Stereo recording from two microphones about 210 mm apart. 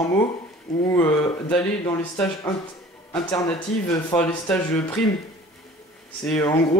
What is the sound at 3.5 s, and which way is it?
Speech, 15° left (ahead or behind).